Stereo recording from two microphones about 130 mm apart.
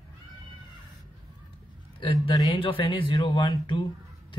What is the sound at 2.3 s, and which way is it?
Speech, 40° left (ahead or behind).